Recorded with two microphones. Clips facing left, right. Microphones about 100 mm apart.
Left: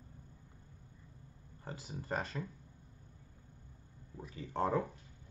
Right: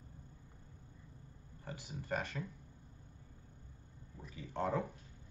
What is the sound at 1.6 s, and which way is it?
Speech, 30° left (ahead or behind).